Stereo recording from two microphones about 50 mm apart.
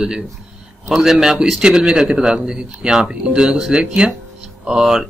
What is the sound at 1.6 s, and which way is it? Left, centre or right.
A man's voice, centre.